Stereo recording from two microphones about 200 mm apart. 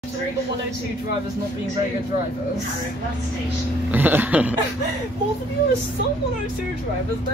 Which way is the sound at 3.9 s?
10° right (ahead or behind).